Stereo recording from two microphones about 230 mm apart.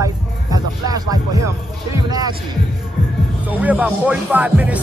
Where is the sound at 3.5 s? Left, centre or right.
Centre.